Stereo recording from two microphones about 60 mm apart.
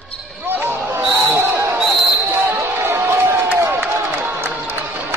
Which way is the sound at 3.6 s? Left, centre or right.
Right.